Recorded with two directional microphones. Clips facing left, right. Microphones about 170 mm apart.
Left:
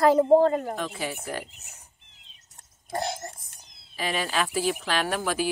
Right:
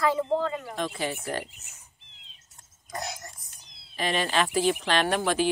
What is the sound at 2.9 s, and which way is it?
Speech, 30° left (ahead or behind).